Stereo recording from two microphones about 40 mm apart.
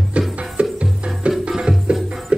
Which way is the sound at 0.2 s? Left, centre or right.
Right.